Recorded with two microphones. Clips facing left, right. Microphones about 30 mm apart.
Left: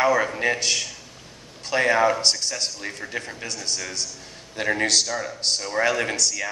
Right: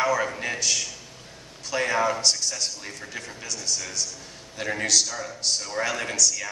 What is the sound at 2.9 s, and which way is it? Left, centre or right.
Speech, left.